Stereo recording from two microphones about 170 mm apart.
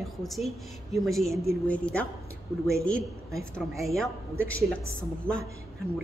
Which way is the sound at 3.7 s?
20° right (ahead or behind).